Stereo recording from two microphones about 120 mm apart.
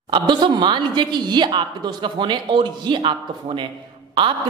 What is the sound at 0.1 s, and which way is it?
A man's voice, 40° right (ahead or behind).